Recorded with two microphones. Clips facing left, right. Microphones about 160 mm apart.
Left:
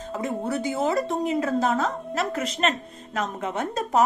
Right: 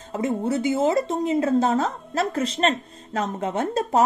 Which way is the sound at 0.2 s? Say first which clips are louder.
Right 4 dB; 25° right (ahead or behind).